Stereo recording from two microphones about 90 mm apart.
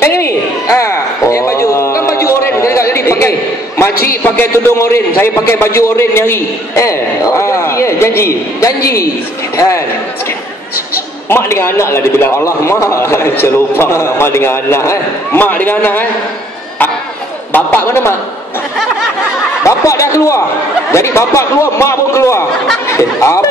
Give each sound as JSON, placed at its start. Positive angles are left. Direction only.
{"t": 0.0, "sound": "a man's voice", "side_deg": 30}
{"t": 11.2, "sound": "a man's voice", "side_deg": 30}
{"t": 17.5, "sound": "a man's voice", "side_deg": 20}
{"t": 19.6, "sound": "a man's voice", "side_deg": 35}